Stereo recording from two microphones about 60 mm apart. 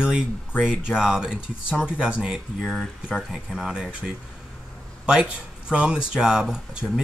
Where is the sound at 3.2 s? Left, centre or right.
Centre.